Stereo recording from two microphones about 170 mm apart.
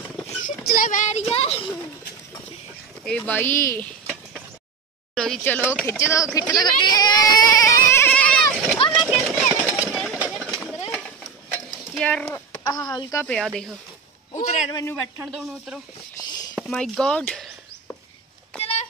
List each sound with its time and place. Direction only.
0.4 s speech: 55° left (ahead or behind); by 1.7 s 35° left (ahead or behind)
3.1 s speech: 10° left (ahead or behind)
8.9 s a sound: centre (ahead or behind)
11.5 s stir: 5° left (ahead or behind)
12.6 s speech: 25° left (ahead or behind)
13.3 s speech: centre (ahead or behind)
14.3 s a man's voice: 45° left (ahead or behind)
14.7 s speech: 20° left (ahead or behind)
15.1 s speech: 5° right (ahead or behind)
16.5 s chop: centre (ahead or behind)
18.6 s a sound: 35° left (ahead or behind)